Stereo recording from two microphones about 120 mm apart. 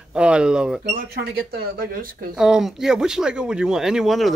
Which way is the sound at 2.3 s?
5° right (ahead or behind).